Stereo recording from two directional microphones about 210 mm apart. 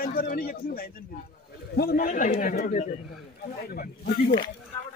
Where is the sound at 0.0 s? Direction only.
45° left (ahead or behind).